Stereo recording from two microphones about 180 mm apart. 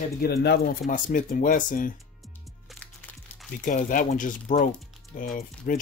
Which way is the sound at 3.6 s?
50° left (ahead or behind).